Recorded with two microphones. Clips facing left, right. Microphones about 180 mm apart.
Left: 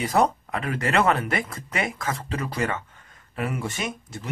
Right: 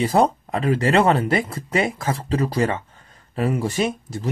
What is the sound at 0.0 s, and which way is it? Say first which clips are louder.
Speech: right 4 dB; 30° right (ahead or behind).